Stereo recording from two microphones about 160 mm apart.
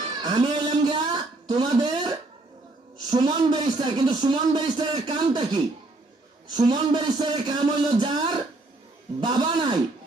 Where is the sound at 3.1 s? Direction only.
25° right (ahead or behind).